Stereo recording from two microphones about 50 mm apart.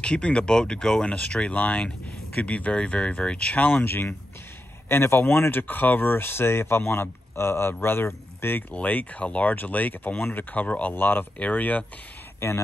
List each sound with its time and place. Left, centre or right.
0.0 s speech: left
0.7 s speech: centre
1.0 s speech: left
3.7 s speech: left
8.7 s speech: left
10.9 s speech: left
11.3 s speech: left
12.4 s speech: left